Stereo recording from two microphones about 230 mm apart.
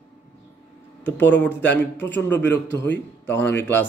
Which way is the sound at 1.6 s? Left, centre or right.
Centre.